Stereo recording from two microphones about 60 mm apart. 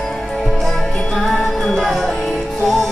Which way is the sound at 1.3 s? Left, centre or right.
Centre.